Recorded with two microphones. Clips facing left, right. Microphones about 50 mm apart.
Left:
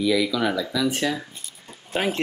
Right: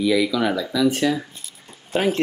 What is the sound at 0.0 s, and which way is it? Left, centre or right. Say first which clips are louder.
Speech: right 2 dB; centre.